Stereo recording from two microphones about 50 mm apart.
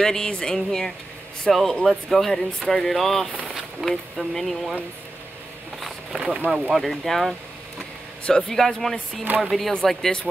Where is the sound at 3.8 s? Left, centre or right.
Centre.